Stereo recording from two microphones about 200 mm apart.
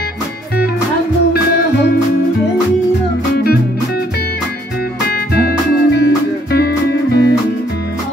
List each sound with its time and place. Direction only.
5.0 s music: 50° left (ahead or behind)